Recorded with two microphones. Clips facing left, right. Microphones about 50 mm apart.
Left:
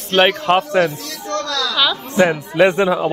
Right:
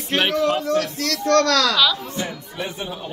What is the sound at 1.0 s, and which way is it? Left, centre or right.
Speech, right.